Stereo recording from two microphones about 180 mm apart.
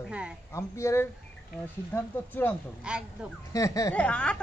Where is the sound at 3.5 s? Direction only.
20° left (ahead or behind).